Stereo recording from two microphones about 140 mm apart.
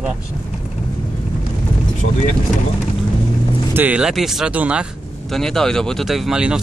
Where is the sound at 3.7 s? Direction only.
10° right (ahead or behind).